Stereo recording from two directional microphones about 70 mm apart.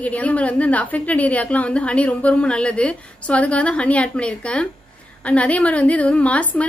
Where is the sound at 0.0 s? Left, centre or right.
Left.